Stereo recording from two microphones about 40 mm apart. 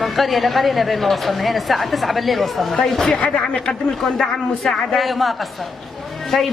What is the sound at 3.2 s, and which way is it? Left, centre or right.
Speech, left.